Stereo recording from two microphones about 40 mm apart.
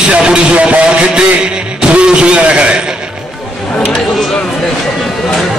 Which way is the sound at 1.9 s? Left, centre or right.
Right.